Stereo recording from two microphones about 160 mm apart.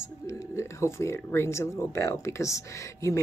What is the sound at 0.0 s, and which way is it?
Speech, 20° left (ahead or behind).